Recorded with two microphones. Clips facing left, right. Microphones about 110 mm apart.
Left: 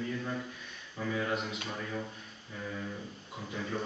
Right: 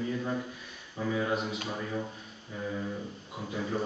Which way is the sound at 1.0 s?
15° right (ahead or behind).